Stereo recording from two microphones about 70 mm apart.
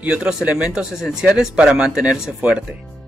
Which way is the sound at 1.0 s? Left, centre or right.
Centre.